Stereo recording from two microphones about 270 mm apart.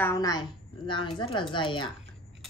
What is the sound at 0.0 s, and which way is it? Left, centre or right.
A woman's voice, centre.